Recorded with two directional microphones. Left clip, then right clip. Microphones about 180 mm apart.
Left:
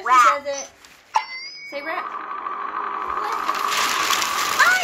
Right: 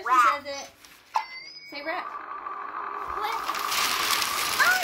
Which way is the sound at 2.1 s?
45° left (ahead or behind).